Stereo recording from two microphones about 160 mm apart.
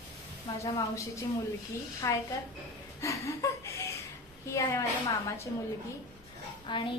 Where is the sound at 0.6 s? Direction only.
20° left (ahead or behind).